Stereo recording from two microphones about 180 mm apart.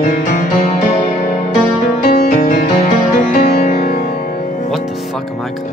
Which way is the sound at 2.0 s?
45° left (ahead or behind).